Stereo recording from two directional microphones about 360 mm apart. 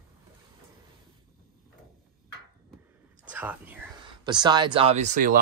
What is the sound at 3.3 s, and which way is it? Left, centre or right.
Speech, centre.